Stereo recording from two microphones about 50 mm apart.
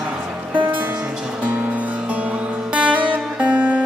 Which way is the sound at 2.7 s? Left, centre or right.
Right.